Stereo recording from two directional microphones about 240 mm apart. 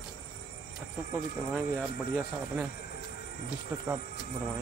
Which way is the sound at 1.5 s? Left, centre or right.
Centre.